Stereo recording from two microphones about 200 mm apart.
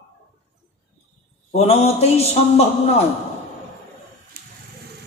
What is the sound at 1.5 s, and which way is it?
Speech, 30° left (ahead or behind).